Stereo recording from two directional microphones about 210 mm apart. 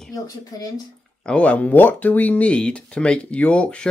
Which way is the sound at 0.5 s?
20° left (ahead or behind).